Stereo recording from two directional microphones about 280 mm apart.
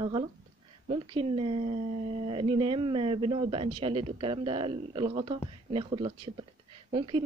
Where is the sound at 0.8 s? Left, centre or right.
Centre.